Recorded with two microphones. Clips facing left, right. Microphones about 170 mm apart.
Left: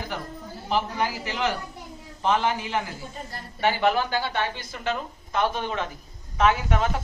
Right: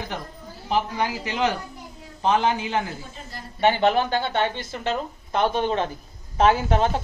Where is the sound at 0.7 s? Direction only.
20° right (ahead or behind).